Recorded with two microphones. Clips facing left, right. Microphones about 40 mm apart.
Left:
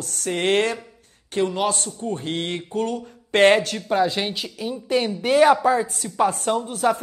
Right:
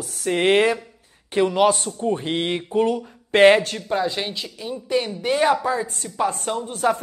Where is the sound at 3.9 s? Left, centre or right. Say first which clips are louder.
Left 3 dB; centre.